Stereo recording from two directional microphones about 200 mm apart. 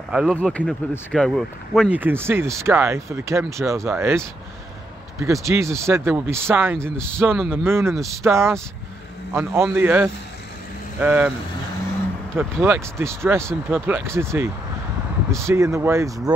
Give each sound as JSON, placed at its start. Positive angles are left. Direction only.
{"t": 0.1, "sound": "speech", "side_deg": -5}
{"t": 5.2, "sound": "speech", "side_deg": -15}
{"t": 12.6, "sound": "speech", "side_deg": -10}